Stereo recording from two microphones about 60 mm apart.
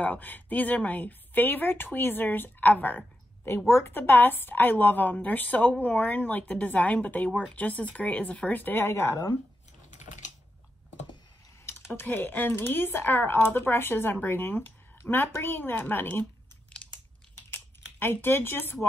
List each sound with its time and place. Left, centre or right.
0.0 s speech: left
3.4 s a woman's voice: left
3.9 s speech: left
11.9 s speech: left
17.9 s speech: left